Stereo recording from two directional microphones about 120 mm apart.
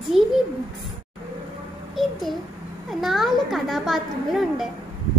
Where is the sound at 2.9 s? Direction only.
Centre (ahead or behind).